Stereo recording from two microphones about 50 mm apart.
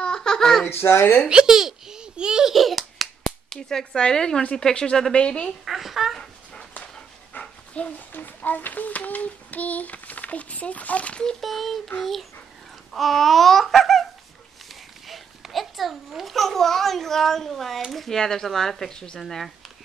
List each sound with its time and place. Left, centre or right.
0.0 s a sound: centre
0.7 s speech: left
1.3 s a child's voice: centre
2.5 s a sound: centre
3.4 s speech: centre
5.7 s a sound: centre
6.6 s dog: left
8.1 s a child's voice: left
11.4 s babbling: centre
14.7 s a child's voice: centre